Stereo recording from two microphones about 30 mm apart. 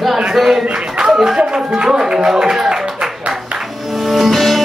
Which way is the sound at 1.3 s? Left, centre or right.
Right.